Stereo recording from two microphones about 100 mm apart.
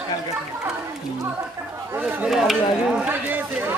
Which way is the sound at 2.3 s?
5° right (ahead or behind).